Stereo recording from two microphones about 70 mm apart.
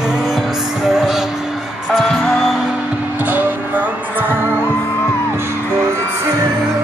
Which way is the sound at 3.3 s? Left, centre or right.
Right.